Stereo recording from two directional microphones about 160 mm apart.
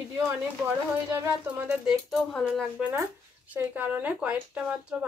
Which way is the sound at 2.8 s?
15° right (ahead or behind).